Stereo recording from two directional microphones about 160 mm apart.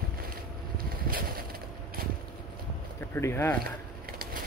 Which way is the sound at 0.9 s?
65° right (ahead or behind).